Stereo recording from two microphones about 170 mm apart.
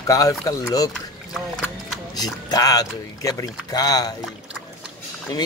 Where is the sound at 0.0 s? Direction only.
20° left (ahead or behind).